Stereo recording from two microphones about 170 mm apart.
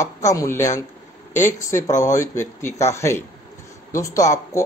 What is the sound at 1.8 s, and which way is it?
Speech, 45° left (ahead or behind).